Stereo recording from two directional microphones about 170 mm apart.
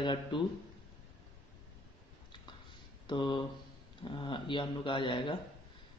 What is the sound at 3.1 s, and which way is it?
A man's voice, 25° left (ahead or behind).